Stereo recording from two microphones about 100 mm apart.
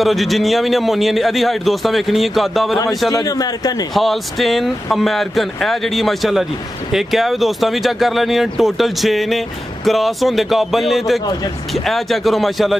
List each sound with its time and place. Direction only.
0.0 s a man's voice: centre (ahead or behind)
3.1 s a man's voice: 40° left (ahead or behind)
3.9 s a man's voice: centre (ahead or behind)